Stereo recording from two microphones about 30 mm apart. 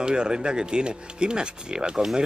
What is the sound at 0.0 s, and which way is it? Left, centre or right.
Speech, right.